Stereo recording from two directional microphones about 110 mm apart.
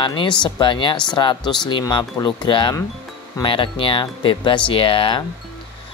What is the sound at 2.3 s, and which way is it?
Speech, 50° left (ahead or behind).